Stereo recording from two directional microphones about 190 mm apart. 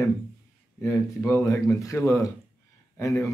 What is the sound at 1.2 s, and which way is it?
A man's voice, 15° left (ahead or behind).